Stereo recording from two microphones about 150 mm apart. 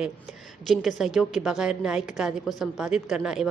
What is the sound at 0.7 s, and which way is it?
A woman's voice, centre (ahead or behind).